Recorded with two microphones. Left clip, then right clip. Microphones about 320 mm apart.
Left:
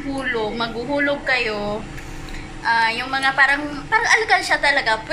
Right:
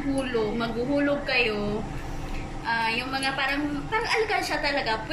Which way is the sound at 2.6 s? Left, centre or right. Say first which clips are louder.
Left 8 dB; centre.